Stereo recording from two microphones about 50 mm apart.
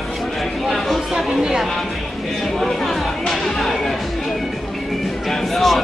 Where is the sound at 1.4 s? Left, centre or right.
Centre.